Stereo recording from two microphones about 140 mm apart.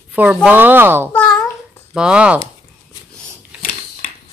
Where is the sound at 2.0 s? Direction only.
5° right (ahead or behind).